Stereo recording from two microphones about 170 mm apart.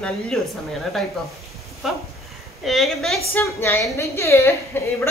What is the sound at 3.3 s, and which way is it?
A woman's voice, 10° left (ahead or behind).